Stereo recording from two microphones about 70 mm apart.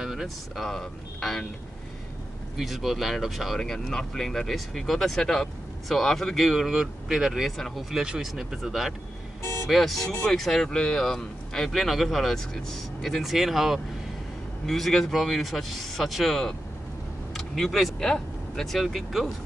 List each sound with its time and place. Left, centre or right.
0.0 s speech: centre
0.7 s speech: centre
2.5 s speech: centre
9.4 s music: left
9.7 s speech: centre